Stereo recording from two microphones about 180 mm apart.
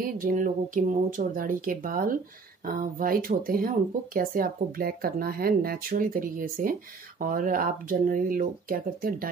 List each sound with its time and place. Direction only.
0.0 s speech: 50° right (ahead or behind)